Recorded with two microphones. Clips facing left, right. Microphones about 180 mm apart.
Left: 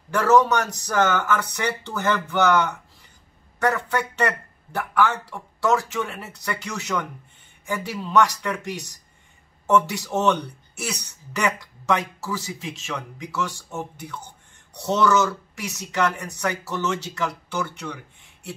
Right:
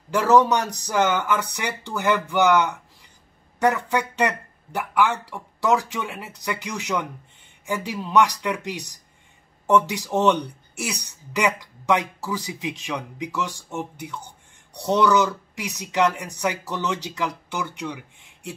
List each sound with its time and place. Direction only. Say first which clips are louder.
0.1 s speech: even; 15° right (ahead or behind)